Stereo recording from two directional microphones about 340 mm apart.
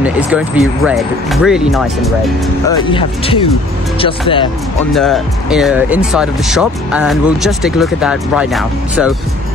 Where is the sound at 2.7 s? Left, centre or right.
Centre.